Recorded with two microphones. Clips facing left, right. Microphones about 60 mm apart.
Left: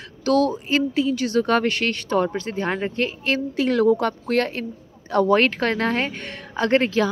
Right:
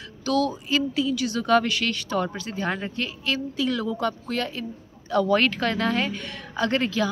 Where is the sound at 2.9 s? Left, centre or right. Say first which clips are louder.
Left 5 dB; left.